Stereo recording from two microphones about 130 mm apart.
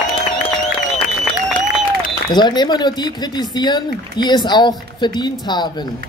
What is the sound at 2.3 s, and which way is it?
A woman's voice, 35° left (ahead or behind).